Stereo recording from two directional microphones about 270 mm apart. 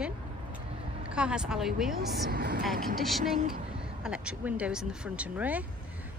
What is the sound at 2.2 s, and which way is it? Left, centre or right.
Speech, right.